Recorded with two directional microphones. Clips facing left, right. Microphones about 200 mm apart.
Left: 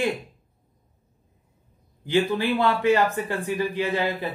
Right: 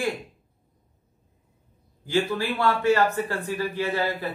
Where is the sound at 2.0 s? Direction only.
20° left (ahead or behind).